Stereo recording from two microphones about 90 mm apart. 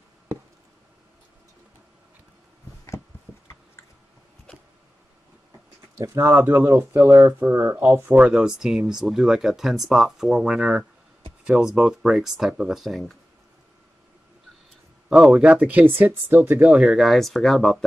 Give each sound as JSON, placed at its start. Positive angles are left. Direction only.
{"t": 6.0, "sound": "speech", "side_deg": -25}
{"t": 8.3, "sound": "speech", "side_deg": -5}
{"t": 15.0, "sound": "speech", "side_deg": -5}
{"t": 16.6, "sound": "speech", "side_deg": -5}